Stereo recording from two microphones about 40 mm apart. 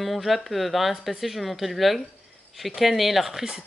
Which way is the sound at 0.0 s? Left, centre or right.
Centre.